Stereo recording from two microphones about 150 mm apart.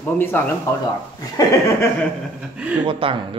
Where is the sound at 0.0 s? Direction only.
15° left (ahead or behind).